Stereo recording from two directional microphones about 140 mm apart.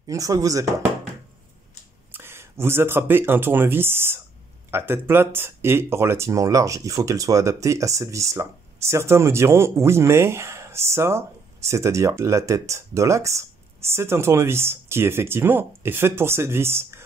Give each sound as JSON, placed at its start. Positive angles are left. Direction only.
{"t": 0.0, "sound": "speech", "side_deg": -25}
{"t": 2.1, "sound": "speech", "side_deg": -15}